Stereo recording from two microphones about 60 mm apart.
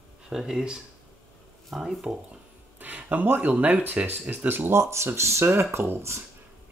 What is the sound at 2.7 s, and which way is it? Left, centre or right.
Speech, right.